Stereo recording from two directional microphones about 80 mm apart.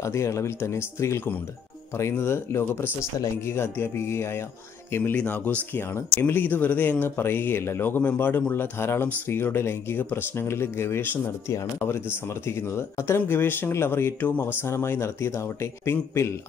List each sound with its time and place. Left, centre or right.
0.0 s speech: left
5.1 s speech: left